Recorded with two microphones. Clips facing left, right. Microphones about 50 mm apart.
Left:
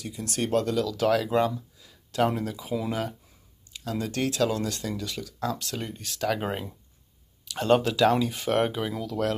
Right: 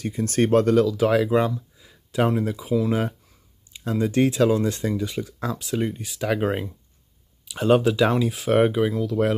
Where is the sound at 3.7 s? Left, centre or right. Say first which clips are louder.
Right 7 dB; right.